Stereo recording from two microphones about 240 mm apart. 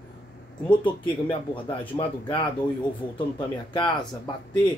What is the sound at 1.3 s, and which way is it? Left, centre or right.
Speech, left.